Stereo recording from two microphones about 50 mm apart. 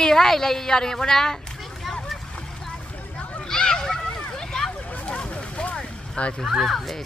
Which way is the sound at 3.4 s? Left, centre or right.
Centre.